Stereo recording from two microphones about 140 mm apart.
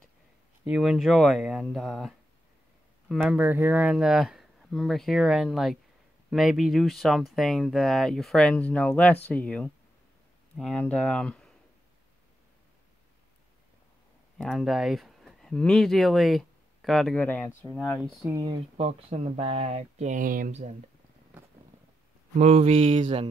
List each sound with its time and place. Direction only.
0.7 s speech: 5° right (ahead or behind)
3.3 s speech: 15° right (ahead or behind); by 11.5 s 5° left (ahead or behind)
14.4 s speech: centre (ahead or behind)
18.3 s speech: 30° right (ahead or behind)
18.8 s speech: 45° right (ahead or behind); by 20.5 s 75° right (ahead or behind)
22.4 s speech: 45° right (ahead or behind)
22.9 s mantra: 60° right (ahead or behind)